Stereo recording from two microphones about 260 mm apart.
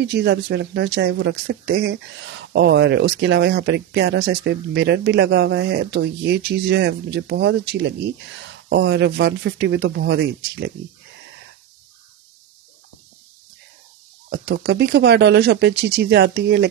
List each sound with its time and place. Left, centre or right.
0.1 s speech: right
14.3 s speech: right